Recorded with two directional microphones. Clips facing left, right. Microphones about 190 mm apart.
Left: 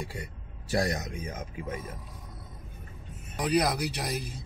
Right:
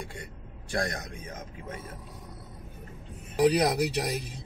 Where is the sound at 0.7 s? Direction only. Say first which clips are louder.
Left 3 dB; 5° left (ahead or behind).